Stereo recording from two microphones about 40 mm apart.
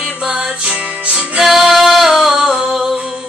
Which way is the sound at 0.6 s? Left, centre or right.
Right.